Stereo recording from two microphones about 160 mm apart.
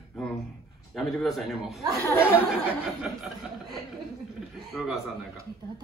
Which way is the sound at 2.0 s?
15° left (ahead or behind).